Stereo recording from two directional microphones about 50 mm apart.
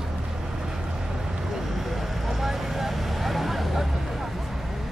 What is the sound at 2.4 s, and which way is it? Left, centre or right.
Vehicle, centre.